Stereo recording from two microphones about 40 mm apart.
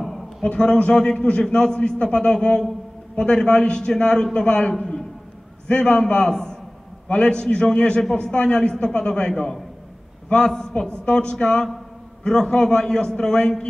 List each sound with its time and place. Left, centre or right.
0.4 s a man's voice: left
10.3 s a man's voice: centre